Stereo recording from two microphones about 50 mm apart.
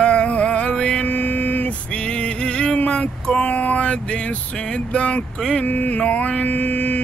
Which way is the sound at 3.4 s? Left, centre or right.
Left.